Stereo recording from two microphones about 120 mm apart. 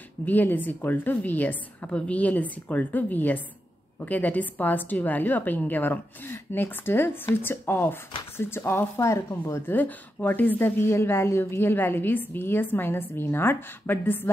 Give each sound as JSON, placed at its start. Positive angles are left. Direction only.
{"t": 0.2, "sound": "a woman's voice", "side_deg": 15}